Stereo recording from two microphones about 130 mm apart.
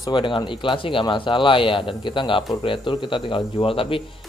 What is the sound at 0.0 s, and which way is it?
Speech, 35° left (ahead or behind).